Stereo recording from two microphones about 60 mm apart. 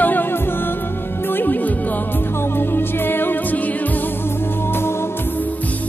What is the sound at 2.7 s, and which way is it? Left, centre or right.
Music, left.